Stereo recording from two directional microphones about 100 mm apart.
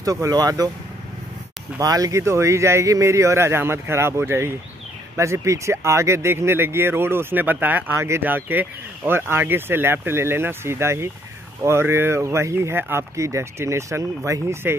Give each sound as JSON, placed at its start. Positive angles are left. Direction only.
{"t": 0.0, "sound": "speech", "side_deg": -35}
{"t": 1.8, "sound": "speech", "side_deg": -35}